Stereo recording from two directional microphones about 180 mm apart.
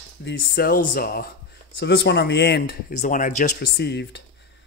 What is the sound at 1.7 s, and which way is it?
Speech, 70° left (ahead or behind).